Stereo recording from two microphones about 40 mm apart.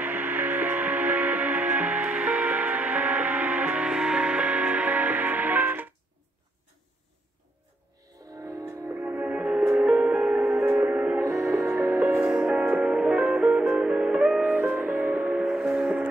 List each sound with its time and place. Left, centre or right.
0.0 s music: right
3.9 s music: right
9.0 s music: right
11.5 s music: right
12.4 s music: right
14.4 s music: right
15.1 s a sound: right
15.4 s music: centre
15.7 s music: right